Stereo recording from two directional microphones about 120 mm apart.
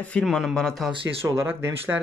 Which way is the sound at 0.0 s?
10° left (ahead or behind).